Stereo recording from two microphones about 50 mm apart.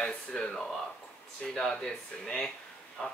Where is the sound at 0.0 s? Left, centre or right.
Centre.